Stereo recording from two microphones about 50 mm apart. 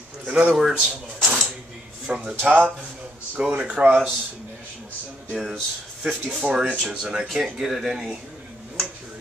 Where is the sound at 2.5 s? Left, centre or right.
Right.